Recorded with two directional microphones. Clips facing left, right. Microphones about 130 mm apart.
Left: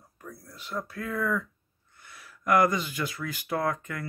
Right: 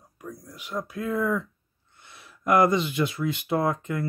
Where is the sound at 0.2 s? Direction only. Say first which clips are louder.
Right 4 dB; 15° right (ahead or behind).